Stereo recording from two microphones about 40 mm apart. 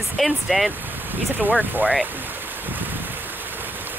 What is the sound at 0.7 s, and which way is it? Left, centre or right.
Speech, right.